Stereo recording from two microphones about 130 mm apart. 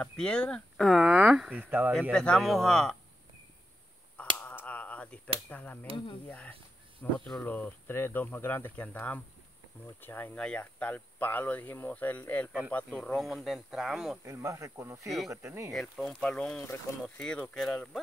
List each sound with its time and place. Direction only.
0.0 s speech: 10° left (ahead or behind); by 2.0 s 15° right (ahead or behind)
2.1 s speech: 5° left (ahead or behind)
4.4 s cap gun: 15° left (ahead or behind)
6.2 s speech: 10° left (ahead or behind); by 14.2 s 5° right (ahead or behind)
14.2 s speech: 25° right (ahead or behind)
15.0 s speech: centre (ahead or behind)
15.4 s speech: 20° right (ahead or behind)
15.7 s speech: 5° left (ahead or behind)